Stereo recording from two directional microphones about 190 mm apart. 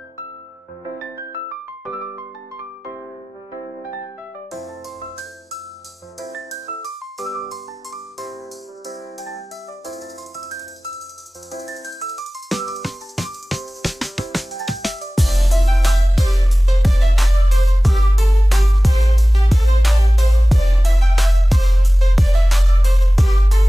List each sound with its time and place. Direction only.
6.2 s music: centre (ahead or behind)